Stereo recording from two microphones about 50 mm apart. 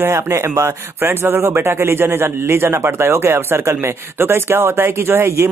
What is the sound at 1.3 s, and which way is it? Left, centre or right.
A man's voice, right.